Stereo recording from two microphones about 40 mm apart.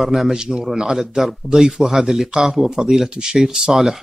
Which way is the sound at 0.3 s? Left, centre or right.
Centre.